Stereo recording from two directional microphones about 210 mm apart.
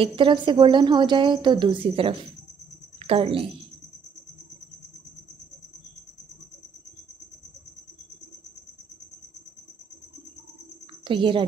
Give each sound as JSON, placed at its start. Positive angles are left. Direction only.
{"t": 0.0, "sound": "a woman's voice", "side_deg": -25}
{"t": 11.1, "sound": "a woman's voice", "side_deg": -25}